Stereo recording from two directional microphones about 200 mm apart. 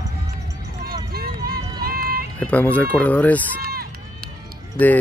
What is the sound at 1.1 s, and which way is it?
Run, 50° right (ahead or behind).